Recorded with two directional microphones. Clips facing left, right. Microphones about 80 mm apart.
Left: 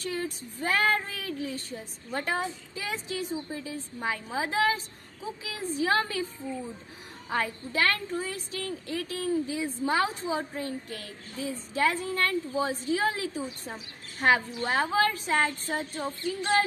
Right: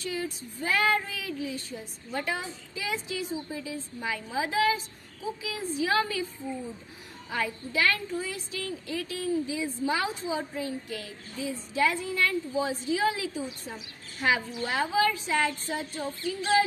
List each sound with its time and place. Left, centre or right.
0.0 s speech: left
7.2 s a woman's voice: left